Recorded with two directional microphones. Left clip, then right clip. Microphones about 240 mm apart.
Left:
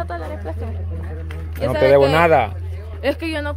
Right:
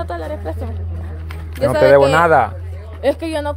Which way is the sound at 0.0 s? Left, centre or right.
Right.